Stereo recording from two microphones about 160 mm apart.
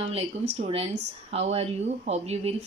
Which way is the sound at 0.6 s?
35° right (ahead or behind).